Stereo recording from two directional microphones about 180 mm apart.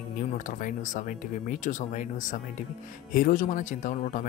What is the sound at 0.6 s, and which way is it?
Speech, 45° left (ahead or behind).